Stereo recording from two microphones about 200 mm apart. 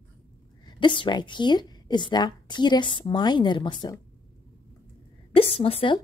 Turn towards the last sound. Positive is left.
turn(degrees=25)  # may be behind; listen again after turning